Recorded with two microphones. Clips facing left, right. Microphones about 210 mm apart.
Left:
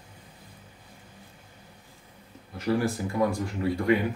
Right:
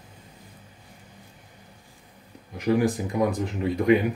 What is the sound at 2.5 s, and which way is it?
Speech, 15° right (ahead or behind).